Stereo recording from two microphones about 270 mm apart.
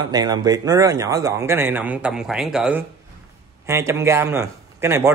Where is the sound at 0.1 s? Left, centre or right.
Centre.